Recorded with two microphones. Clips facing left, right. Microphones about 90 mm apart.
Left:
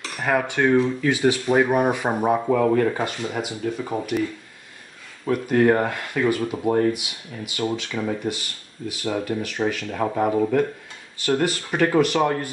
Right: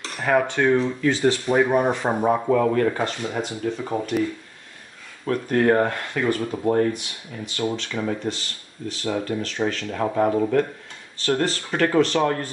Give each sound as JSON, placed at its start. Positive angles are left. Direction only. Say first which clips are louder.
{"t": 0.2, "sound": "speech", "louder": "right 1 dB", "side_deg": 10}
{"t": 2.4, "sound": "speech", "louder": "even", "side_deg": -5}
{"t": 2.7, "sound": "speech", "louder": "left 1 dB", "side_deg": 5}
{"t": 5.2, "sound": "speech", "louder": "left 2 dB", "side_deg": 10}
{"t": 10.0, "sound": "speech", "louder": "even", "side_deg": 0}